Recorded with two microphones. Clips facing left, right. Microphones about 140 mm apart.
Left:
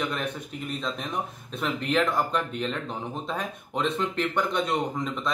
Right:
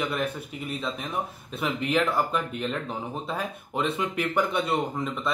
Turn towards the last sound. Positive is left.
turn(degrees=-5)  # may be behind; listen again after turning